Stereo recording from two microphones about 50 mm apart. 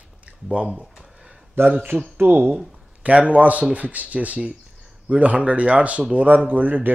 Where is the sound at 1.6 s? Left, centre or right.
Right.